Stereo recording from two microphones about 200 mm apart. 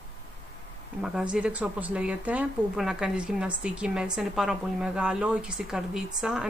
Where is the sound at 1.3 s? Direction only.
5° right (ahead or behind).